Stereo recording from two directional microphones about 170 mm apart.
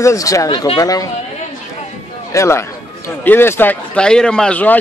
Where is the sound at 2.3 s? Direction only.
15° left (ahead or behind).